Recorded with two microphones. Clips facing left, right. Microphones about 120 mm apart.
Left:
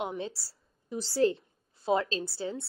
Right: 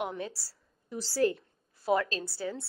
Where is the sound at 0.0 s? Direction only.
25° left (ahead or behind).